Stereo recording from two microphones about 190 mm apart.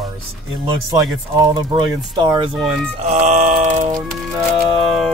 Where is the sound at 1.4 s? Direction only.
25° right (ahead or behind).